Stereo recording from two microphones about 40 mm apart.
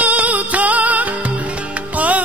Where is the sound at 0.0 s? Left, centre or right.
Right.